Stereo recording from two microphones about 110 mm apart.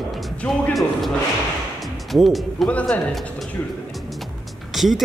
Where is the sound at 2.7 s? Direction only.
10° left (ahead or behind).